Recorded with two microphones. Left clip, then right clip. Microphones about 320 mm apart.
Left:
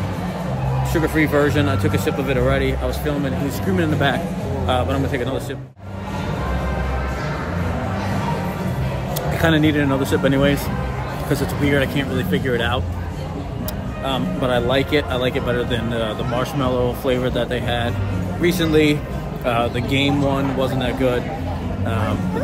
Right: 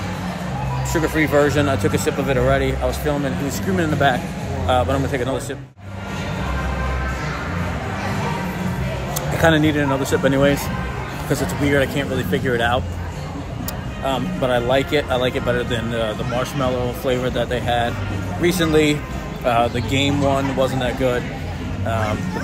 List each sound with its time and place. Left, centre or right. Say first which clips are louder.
0.9 s speech: right 1 dB; centre
9.4 s speech: right 1 dB; centre
14.0 s speech: right 1 dB; centre